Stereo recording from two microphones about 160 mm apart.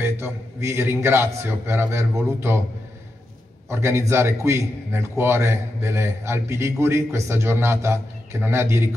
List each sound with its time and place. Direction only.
0.0 s a man's voice: 15° right (ahead or behind)
3.6 s a man's voice: 15° right (ahead or behind)